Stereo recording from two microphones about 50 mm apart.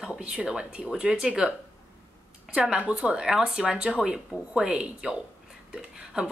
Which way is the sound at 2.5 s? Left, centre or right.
Right.